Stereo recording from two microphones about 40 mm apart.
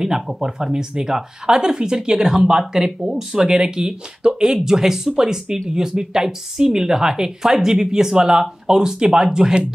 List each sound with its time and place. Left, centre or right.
0.0 s speech: centre